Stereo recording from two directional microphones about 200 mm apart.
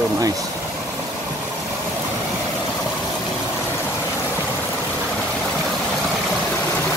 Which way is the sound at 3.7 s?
10° left (ahead or behind).